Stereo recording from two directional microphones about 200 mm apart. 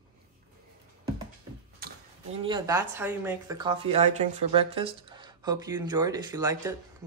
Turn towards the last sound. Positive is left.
turn(degrees=-15)  # may be behind; listen again after turning